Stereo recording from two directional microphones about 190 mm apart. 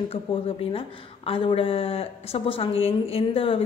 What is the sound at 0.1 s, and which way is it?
A woman's voice, 30° left (ahead or behind).